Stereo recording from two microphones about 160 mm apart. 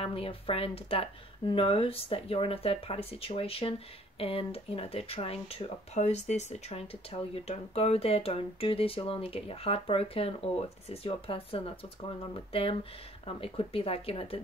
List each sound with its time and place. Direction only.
0.0 s speech: 35° left (ahead or behind)